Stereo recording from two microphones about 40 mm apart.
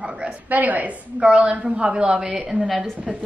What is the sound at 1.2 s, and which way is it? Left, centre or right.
A woman's voice, right.